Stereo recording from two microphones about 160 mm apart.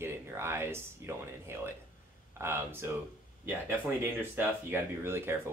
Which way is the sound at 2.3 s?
15° right (ahead or behind).